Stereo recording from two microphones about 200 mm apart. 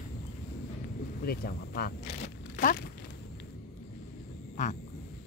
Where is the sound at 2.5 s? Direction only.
50° left (ahead or behind).